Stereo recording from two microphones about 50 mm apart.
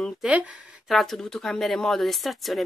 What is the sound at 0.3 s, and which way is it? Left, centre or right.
Speech, right.